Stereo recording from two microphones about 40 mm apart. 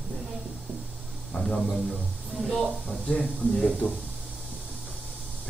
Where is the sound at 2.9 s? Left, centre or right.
Left.